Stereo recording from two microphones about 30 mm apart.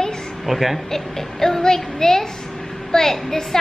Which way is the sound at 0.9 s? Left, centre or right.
Centre.